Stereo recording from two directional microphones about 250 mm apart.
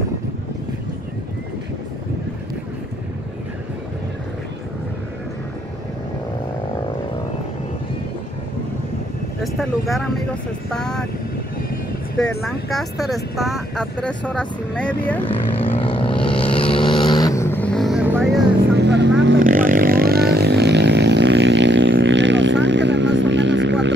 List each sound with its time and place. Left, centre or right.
9.4 s speech: centre
12.2 s speech: centre
15.2 s vehicle: left; by 18.4 s centre
18.8 s vehicle: right
19.4 s vehicle: right